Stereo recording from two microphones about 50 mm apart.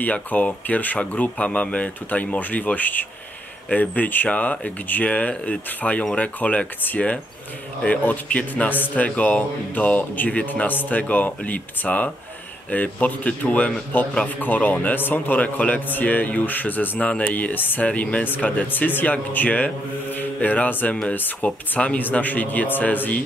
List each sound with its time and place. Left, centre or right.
0.0 s speech: left
7.8 s speech: left
8.6 s speech: left
17.8 s speech: left
18.2 s speech: left
21.5 s speech: left
22.0 s speech: left